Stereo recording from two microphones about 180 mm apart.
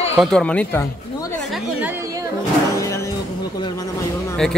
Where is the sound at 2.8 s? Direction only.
15° left (ahead or behind).